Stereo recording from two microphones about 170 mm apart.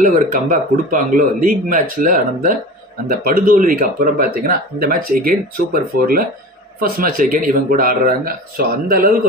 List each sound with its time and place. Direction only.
0.0 s speech: 50° right (ahead or behind)